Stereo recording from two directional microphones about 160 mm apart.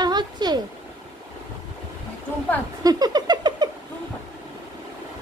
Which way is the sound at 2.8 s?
25° right (ahead or behind).